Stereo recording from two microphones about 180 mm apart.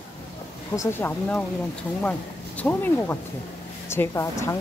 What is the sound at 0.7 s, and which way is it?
Speech, 15° left (ahead or behind).